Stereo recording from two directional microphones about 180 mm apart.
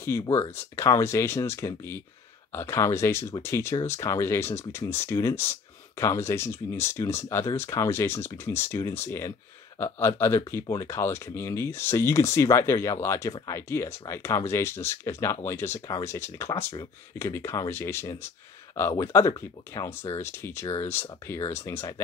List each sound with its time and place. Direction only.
0.0 s speech: 15° left (ahead or behind)